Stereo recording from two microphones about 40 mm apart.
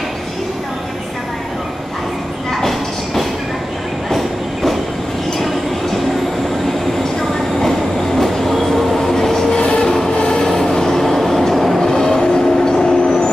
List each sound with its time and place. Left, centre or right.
8.2 s train: centre
11.8 s vehicle: centre
12.4 s train: centre